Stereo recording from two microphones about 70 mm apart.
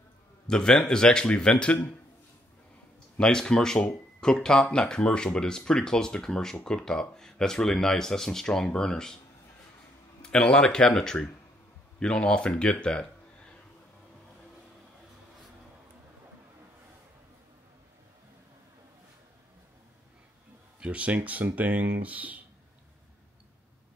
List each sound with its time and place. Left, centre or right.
0.5 s speech: centre
3.2 s speech: centre
10.2 s speech: centre
20.8 s speech: centre